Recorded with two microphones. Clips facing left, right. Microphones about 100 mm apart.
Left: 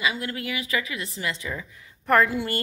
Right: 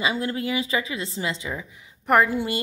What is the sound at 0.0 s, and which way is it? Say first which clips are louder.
A woman's voice: right 3 dB; 25° right (ahead or behind).